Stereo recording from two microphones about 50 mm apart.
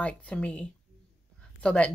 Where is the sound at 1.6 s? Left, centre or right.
Left.